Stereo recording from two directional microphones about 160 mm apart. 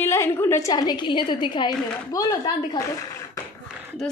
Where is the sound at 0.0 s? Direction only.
15° left (ahead or behind).